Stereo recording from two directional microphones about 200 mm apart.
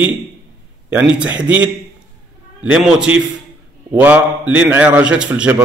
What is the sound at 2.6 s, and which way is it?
A man's voice, 5° right (ahead or behind).